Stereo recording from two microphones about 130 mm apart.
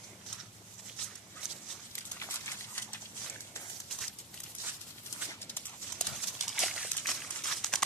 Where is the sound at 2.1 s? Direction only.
20° left (ahead or behind).